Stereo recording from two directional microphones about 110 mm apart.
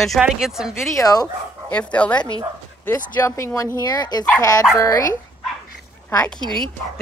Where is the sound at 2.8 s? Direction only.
25° left (ahead or behind).